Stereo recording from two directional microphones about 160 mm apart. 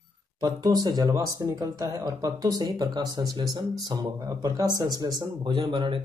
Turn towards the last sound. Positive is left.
turn(degrees=-30)  # may be behind; listen again after turning